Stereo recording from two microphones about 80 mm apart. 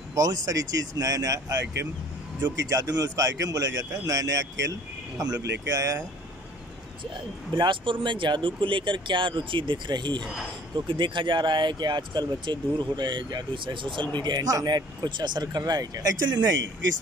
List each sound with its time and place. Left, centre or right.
0.1 s speech: right
2.7 s speech: right
7.5 s speech: right
10.9 s speech: right
14.1 s speech: right
14.4 s speech: right
15.0 s speech: right